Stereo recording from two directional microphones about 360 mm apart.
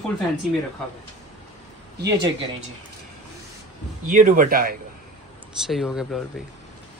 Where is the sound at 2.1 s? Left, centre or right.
Centre.